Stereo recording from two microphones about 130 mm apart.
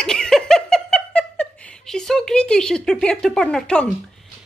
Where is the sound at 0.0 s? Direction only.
5° left (ahead or behind).